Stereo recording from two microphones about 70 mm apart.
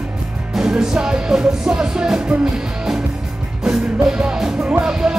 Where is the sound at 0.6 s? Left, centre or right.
Centre.